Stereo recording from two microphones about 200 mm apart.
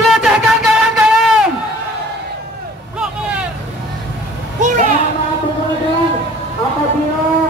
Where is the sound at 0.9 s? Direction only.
5° right (ahead or behind).